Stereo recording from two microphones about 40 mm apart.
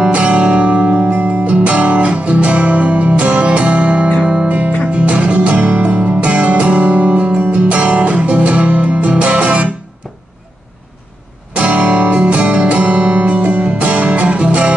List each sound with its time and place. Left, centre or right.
0.0 s music: right
4.5 s music: right
11.5 s music: right